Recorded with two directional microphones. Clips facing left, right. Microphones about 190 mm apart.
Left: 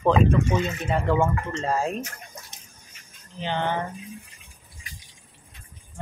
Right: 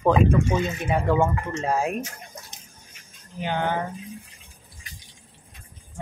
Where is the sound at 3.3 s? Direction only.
10° right (ahead or behind).